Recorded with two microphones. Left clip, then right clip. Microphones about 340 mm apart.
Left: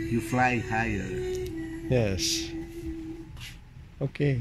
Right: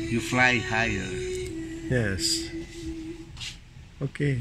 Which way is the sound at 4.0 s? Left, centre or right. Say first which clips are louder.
Left 1 dB; centre.